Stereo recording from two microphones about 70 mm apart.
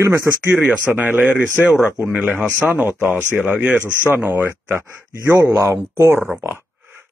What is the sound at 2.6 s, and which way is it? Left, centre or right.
Speech, right.